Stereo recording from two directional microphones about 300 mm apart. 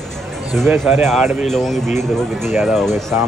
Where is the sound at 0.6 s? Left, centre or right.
Centre.